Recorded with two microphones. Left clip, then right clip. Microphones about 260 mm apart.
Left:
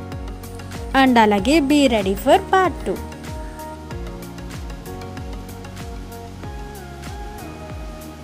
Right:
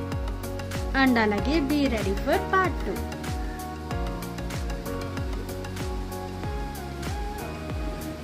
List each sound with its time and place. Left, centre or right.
0.9 s speech: left